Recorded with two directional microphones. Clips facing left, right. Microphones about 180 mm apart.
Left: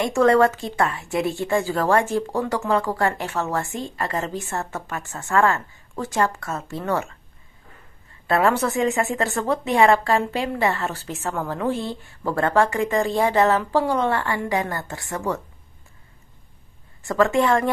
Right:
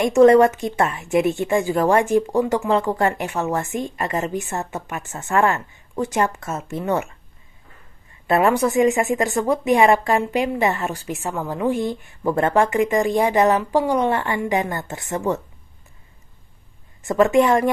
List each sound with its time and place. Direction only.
0.0 s a woman's voice: 20° right (ahead or behind)
8.3 s a woman's voice: 15° right (ahead or behind)
17.0 s a woman's voice: 20° right (ahead or behind)